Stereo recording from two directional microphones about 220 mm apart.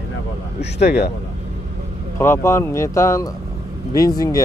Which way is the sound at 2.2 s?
10° left (ahead or behind).